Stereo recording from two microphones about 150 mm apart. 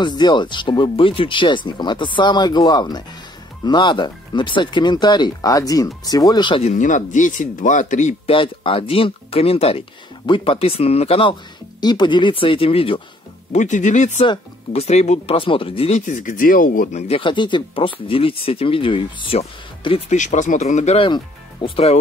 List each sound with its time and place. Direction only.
0.0 s speech: 30° left (ahead or behind)
6.6 s speech: 50° left (ahead or behind)
8.3 s speech: 35° left (ahead or behind)
13.5 s speech: 55° left (ahead or behind)
14.2 s speech: 35° left (ahead or behind)
16.1 s speech: 60° left (ahead or behind)
17.1 s speech: 30° left (ahead or behind)
20.2 s speech: 55° left (ahead or behind)
21.1 s speech: 35° left (ahead or behind)